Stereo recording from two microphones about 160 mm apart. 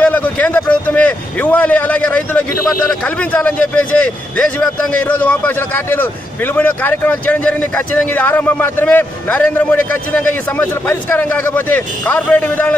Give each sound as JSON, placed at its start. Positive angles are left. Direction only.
{"t": 0.0, "sound": "a man's voice", "side_deg": 10}